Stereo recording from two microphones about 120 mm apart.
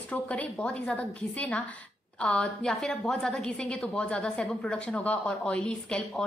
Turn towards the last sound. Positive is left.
turn(degrees=10)  # may be behind; listen again after turning